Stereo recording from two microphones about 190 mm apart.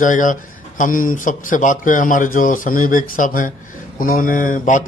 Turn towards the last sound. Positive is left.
turn(degrees=40)  # may be behind; listen again after turning